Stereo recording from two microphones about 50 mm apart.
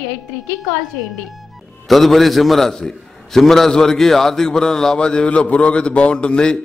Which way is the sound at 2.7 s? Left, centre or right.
Centre.